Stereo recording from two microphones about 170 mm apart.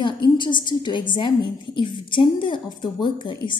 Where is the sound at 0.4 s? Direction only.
25° left (ahead or behind).